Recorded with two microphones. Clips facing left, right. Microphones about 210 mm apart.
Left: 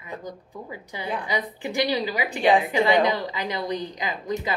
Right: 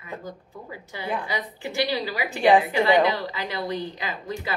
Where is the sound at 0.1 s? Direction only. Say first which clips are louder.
Left 1 dB; 15° left (ahead or behind).